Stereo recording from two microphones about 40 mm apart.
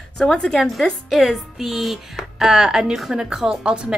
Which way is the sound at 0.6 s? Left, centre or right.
Centre.